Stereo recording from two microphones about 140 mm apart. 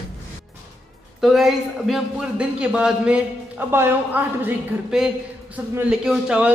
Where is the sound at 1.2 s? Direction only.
Centre (ahead or behind).